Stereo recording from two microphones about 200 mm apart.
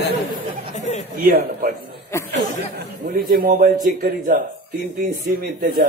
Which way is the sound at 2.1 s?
15° left (ahead or behind).